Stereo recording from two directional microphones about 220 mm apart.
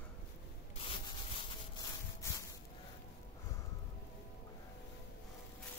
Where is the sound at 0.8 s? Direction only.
25° left (ahead or behind).